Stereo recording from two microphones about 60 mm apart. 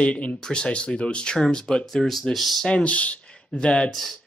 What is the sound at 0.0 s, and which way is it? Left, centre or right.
Speech, left.